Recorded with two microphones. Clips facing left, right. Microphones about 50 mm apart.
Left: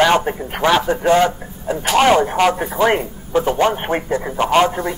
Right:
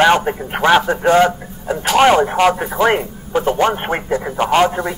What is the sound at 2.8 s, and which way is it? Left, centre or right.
Speech, right.